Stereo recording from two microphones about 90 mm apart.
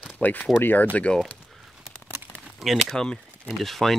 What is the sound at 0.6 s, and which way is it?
Speech, 20° left (ahead or behind).